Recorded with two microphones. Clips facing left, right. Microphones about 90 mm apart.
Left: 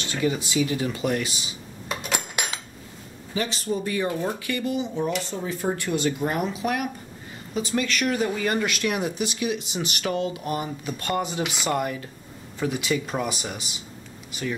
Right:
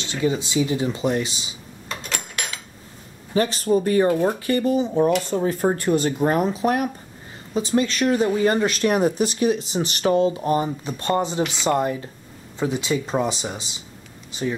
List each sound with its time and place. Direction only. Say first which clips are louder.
0.0 s speech: right 2 dB; 20° right (ahead or behind)
1.9 s a sound: left 2 dB; 10° left (ahead or behind)
3.3 s speech: right 8 dB; 45° right (ahead or behind); by 13.7 s 25° right (ahead or behind)